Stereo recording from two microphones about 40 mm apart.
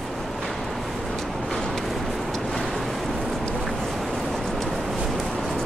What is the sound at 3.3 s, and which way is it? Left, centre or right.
Vehicle, centre.